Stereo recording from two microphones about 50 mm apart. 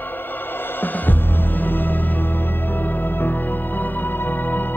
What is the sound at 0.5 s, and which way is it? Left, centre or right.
Music, left.